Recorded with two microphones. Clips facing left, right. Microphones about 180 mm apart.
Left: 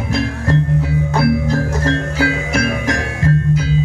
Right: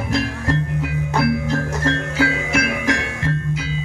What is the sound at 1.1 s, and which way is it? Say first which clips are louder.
Music: left 3 dB; 35° left (ahead or behind).